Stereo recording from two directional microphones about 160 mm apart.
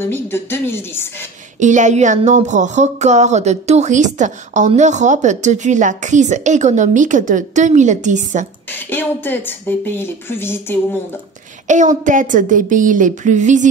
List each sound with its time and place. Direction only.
0.0 s a woman's voice: 15° left (ahead or behind)
1.6 s speech: 50° right (ahead or behind)
8.7 s a woman's voice: 10° left (ahead or behind)
11.6 s speech: 50° right (ahead or behind)